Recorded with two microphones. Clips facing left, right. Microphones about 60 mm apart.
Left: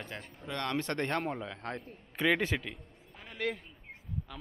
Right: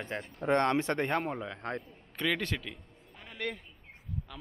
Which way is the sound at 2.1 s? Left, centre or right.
Centre.